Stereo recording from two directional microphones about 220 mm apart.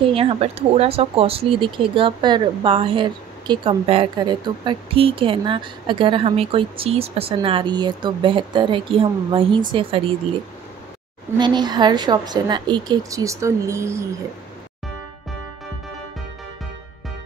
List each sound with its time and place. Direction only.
0.1 s speech: 25° right (ahead or behind)
11.3 s speech: 20° right (ahead or behind)